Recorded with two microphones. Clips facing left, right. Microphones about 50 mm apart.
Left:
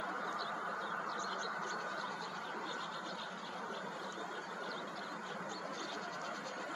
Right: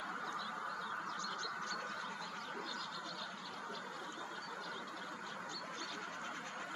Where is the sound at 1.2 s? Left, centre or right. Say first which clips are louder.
Left 3 dB; left.